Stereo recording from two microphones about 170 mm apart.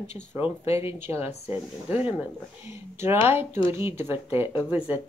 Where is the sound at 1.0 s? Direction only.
15° right (ahead or behind).